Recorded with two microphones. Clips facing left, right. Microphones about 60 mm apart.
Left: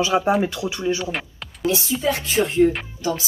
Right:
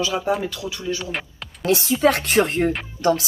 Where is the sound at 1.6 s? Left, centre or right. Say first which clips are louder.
Right 4 dB; right.